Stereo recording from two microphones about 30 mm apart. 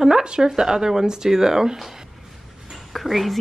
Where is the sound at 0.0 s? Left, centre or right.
Right.